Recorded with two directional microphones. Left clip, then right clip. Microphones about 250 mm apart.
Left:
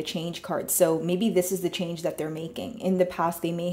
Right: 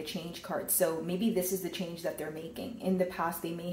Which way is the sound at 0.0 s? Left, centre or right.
Left.